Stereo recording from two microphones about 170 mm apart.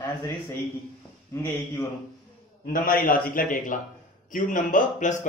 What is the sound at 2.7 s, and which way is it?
A man's voice, 55° left (ahead or behind).